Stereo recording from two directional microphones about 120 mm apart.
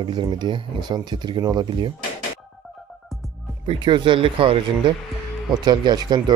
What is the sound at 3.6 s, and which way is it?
Speech, 45° right (ahead or behind).